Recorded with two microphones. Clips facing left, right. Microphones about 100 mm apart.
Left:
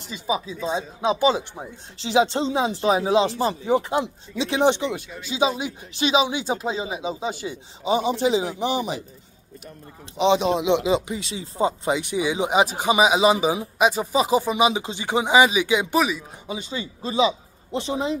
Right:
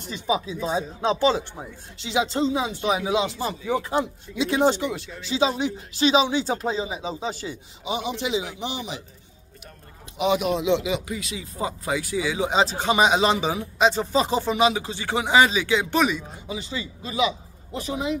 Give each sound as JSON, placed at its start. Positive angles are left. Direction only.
{"t": 0.1, "sound": "speech", "side_deg": 0}
{"t": 1.0, "sound": "speech", "side_deg": 15}
{"t": 2.0, "sound": "speech", "side_deg": 30}
{"t": 3.6, "sound": "speech", "side_deg": 25}
{"t": 7.8, "sound": "speech", "side_deg": 35}
{"t": 10.1, "sound": "speech", "side_deg": 25}
{"t": 16.0, "sound": "speech", "side_deg": 5}
{"t": 16.4, "sound": "speech", "side_deg": 25}